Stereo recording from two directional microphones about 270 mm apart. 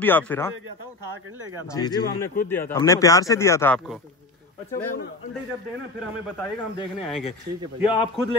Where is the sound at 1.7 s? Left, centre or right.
Centre.